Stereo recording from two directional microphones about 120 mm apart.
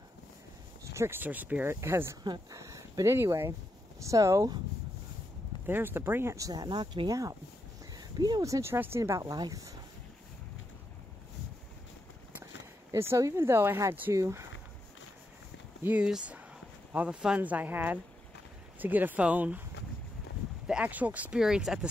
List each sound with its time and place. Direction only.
0.9 s speech: 20° right (ahead or behind)
2.2 s speech: 30° right (ahead or behind)
5.7 s speech: 20° right (ahead or behind)
12.9 s speech: 25° right (ahead or behind)
15.8 s speech: 10° right (ahead or behind)
20.6 s speech: 10° right (ahead or behind)